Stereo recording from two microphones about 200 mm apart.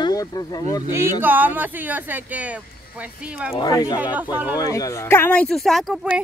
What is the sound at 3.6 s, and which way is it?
Speech, 20° left (ahead or behind).